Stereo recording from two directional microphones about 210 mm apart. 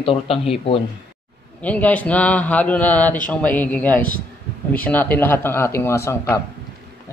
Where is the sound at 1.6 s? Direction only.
5° left (ahead or behind).